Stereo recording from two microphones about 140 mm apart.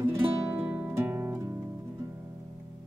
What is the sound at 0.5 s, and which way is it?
Music, 20° right (ahead or behind).